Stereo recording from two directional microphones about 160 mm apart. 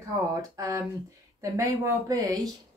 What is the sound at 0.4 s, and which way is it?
Speech, 20° right (ahead or behind).